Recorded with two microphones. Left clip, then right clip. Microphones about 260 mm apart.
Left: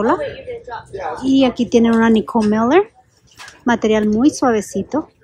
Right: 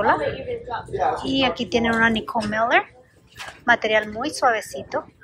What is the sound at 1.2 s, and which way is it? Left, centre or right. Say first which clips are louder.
Speech: left 6 dB; left.